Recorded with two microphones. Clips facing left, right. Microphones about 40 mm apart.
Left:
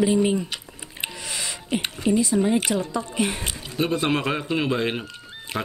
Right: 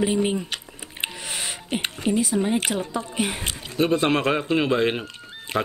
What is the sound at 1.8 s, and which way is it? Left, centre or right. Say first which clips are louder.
Speech: left 1 dB; right.